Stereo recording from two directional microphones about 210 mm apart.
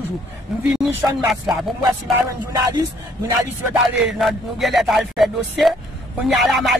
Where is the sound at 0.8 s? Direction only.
Centre (ahead or behind).